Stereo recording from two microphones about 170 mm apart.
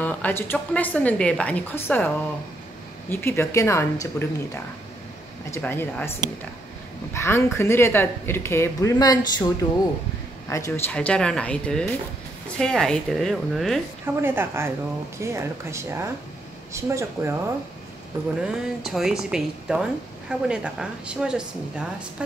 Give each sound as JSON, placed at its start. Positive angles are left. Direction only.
{"t": 0.0, "sound": "speech", "side_deg": 10}
{"t": 5.5, "sound": "speech", "side_deg": 10}
{"t": 7.2, "sound": "speech", "side_deg": 15}
{"t": 11.0, "sound": "speech", "side_deg": 5}
{"t": 14.0, "sound": "speech", "side_deg": -15}
{"t": 18.4, "sound": "speech", "side_deg": -5}